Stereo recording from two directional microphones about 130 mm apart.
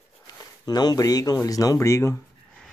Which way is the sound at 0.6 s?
30° left (ahead or behind).